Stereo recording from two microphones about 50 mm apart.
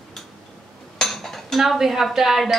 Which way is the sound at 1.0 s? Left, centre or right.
Centre.